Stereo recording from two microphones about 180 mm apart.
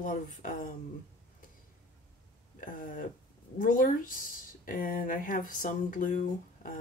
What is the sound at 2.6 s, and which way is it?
Speech, 50° left (ahead or behind).